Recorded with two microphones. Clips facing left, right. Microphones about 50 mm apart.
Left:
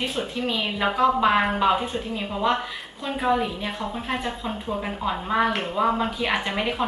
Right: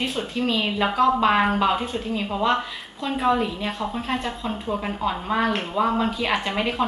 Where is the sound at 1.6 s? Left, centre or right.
Centre.